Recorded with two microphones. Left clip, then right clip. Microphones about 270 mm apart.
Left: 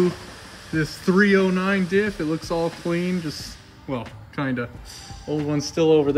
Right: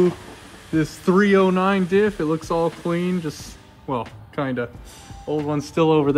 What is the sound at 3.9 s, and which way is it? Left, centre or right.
Speech, centre.